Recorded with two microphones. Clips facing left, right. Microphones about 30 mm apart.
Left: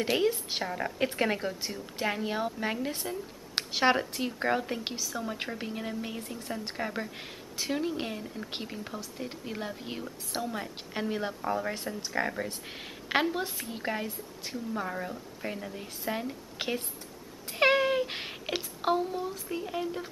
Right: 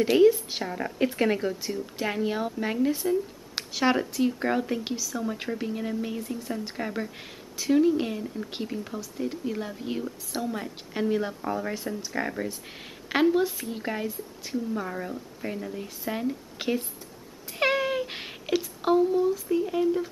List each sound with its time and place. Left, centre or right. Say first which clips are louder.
0.0 s speech: right 8 dB; centre
4.8 s speech: right 4 dB; centre
12.1 s speech: even; centre
17.5 s a sound: left 1 dB; centre
18.5 s speech: right 5 dB; centre